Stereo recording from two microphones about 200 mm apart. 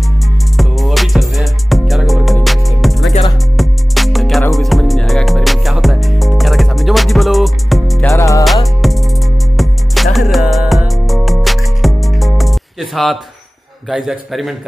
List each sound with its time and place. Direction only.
0.6 s music: centre (ahead or behind)
8.1 s music: 15° left (ahead or behind)
8.8 s music: centre (ahead or behind)
13.8 s a man's voice: centre (ahead or behind)